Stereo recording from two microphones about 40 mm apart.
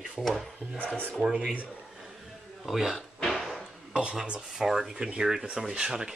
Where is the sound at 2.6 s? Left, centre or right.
Centre.